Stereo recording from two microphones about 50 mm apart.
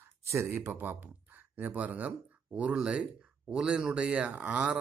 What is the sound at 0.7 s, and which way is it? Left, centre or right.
Speech, right.